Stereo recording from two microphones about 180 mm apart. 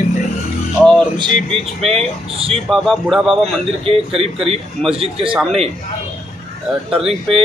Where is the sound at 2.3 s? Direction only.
35° right (ahead or behind).